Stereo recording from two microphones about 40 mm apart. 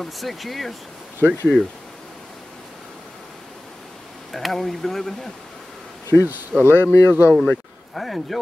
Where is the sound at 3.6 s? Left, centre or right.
Centre.